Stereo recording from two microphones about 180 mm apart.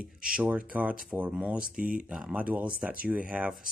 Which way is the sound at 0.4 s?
10° right (ahead or behind).